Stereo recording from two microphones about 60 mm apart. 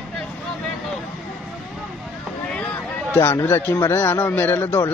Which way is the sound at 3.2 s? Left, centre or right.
Left.